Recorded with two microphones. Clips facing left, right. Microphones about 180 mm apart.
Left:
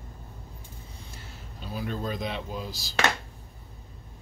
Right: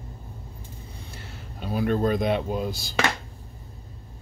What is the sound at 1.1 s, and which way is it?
Speech, 65° right (ahead or behind).